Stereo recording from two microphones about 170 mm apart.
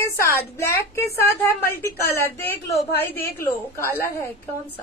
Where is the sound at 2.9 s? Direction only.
15° left (ahead or behind).